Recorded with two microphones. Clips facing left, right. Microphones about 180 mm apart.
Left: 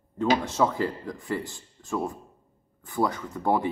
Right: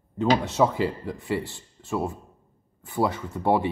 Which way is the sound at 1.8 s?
20° right (ahead or behind).